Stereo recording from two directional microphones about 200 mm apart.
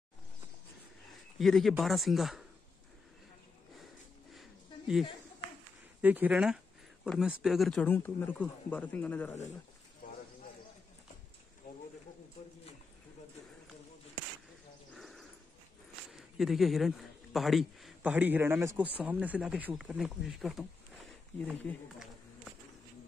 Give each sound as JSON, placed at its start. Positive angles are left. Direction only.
{"t": 1.4, "sound": "a man's voice", "side_deg": 0}
{"t": 3.8, "sound": "a sound", "side_deg": 0}
{"t": 5.9, "sound": "speech", "side_deg": -10}
{"t": 10.0, "sound": "bird", "side_deg": 45}
{"t": 15.0, "sound": "bird", "side_deg": 0}
{"t": 16.1, "sound": "speech", "side_deg": 0}